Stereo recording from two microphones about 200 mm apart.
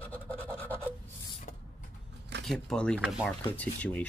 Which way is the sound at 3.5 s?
5° left (ahead or behind).